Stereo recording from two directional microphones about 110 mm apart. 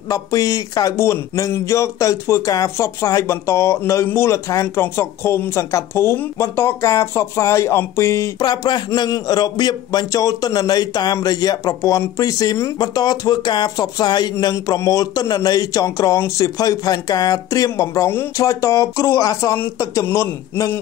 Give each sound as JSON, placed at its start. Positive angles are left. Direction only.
{"t": 0.1, "sound": "speech", "side_deg": 30}
{"t": 8.4, "sound": "a man's voice", "side_deg": 40}